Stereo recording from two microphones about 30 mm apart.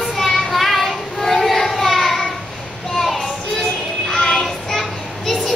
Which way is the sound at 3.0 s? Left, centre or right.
Centre.